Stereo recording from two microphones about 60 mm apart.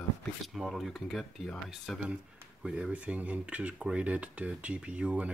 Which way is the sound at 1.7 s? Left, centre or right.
Centre.